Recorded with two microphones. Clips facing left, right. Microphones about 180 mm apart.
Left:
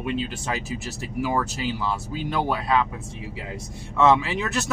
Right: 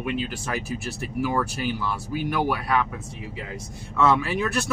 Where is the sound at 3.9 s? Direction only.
25° left (ahead or behind).